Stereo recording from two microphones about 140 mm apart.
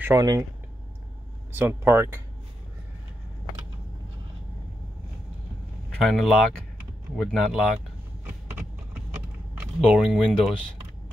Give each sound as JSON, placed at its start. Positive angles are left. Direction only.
{"t": 0.0, "sound": "speech", "side_deg": -25}
{"t": 1.5, "sound": "speech", "side_deg": -15}
{"t": 6.0, "sound": "speech", "side_deg": 0}
{"t": 9.6, "sound": "speech", "side_deg": -5}